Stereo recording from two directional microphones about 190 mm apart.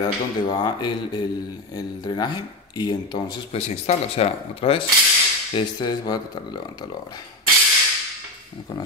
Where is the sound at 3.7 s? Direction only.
35° left (ahead or behind).